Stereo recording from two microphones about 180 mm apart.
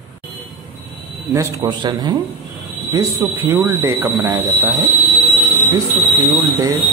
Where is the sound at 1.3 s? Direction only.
20° right (ahead or behind).